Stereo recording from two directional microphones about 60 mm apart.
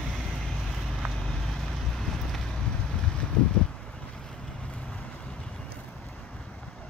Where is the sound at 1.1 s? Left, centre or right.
Centre.